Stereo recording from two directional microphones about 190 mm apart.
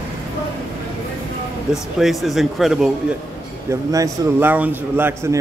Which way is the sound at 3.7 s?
15° right (ahead or behind).